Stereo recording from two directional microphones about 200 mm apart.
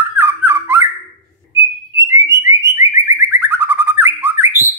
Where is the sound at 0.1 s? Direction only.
10° right (ahead or behind).